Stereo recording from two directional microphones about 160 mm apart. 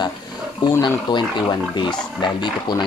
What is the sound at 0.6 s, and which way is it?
Speech, 25° left (ahead or behind).